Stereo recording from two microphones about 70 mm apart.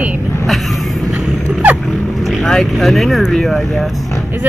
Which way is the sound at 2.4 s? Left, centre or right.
Centre.